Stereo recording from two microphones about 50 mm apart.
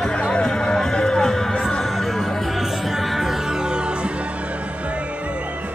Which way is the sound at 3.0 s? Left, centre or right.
Centre.